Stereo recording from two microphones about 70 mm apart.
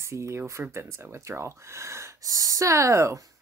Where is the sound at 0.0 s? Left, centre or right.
Right.